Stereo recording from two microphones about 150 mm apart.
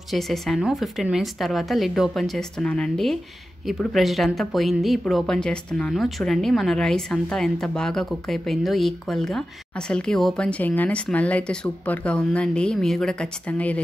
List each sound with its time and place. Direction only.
0.1 s speech: centre (ahead or behind)